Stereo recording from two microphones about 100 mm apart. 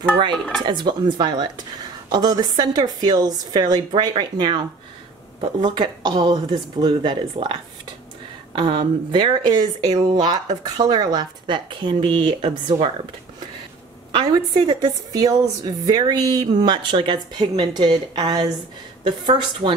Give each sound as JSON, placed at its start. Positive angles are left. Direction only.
{"t": 0.6, "sound": "a woman's voice", "side_deg": -50}
{"t": 8.5, "sound": "a woman's voice", "side_deg": -55}
{"t": 14.1, "sound": "a woman's voice", "side_deg": -45}